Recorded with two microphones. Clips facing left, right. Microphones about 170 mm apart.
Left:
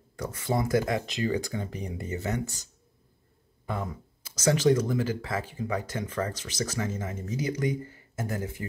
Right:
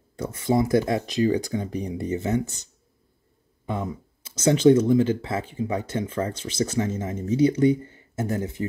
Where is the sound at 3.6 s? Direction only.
20° right (ahead or behind).